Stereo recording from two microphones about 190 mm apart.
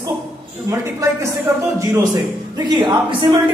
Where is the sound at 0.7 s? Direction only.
15° right (ahead or behind).